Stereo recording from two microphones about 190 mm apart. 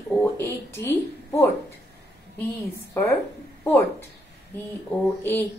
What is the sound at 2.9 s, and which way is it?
Speech, 15° left (ahead or behind).